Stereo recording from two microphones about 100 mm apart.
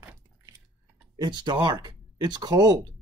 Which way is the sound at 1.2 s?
45° right (ahead or behind).